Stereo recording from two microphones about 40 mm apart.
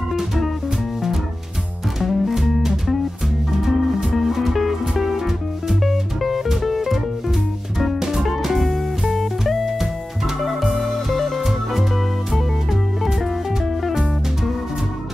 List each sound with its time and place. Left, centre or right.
0.1 s music: centre
2.0 s music: centre
13.8 s music: centre